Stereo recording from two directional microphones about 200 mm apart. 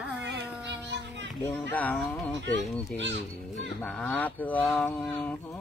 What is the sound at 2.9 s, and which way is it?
Speech, 65° right (ahead or behind).